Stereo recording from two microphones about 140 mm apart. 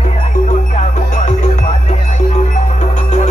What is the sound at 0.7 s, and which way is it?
Music, 60° left (ahead or behind).